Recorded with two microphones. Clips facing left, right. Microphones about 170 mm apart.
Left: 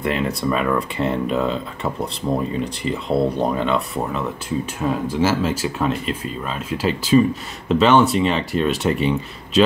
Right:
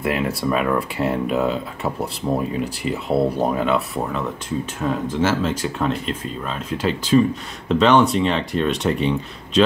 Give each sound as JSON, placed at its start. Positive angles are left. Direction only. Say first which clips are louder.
{"t": 0.0, "sound": "speech", "louder": "even", "side_deg": -5}